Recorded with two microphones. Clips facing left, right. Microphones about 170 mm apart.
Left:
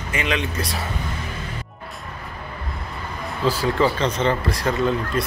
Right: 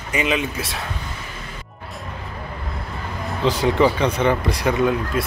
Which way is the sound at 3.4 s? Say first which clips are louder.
Right 2 dB; 20° right (ahead or behind).